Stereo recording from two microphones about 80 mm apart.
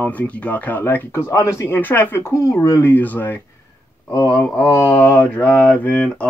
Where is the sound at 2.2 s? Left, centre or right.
Left.